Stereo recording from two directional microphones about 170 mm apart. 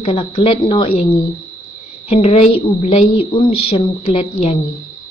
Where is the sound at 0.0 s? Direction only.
35° left (ahead or behind).